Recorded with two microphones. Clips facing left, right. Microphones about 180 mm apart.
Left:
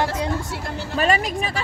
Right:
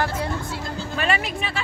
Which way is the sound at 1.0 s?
40° left (ahead or behind).